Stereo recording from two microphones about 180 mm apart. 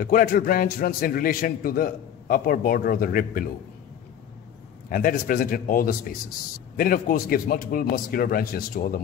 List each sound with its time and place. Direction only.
0.0 s a man's voice: 50° left (ahead or behind)
4.8 s a man's voice: 50° left (ahead or behind)